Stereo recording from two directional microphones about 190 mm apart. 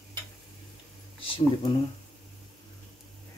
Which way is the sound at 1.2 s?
30° left (ahead or behind).